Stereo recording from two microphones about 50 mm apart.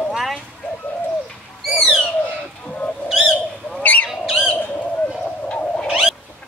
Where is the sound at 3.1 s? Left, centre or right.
Centre.